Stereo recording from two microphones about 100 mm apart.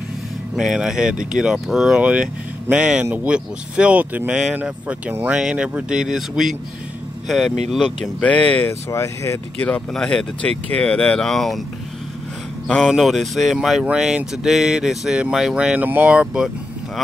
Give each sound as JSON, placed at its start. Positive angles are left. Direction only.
{"t": 0.6, "sound": "speech", "side_deg": -5}
{"t": 8.9, "sound": "speech", "side_deg": 30}
{"t": 9.6, "sound": "speech", "side_deg": 15}
{"t": 12.8, "sound": "speech", "side_deg": 0}